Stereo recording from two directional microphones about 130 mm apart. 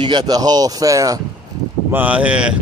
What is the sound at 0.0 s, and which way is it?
Speech, 35° right (ahead or behind).